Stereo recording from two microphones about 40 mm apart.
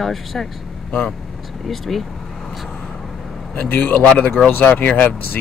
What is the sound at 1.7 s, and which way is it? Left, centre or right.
Speech, centre.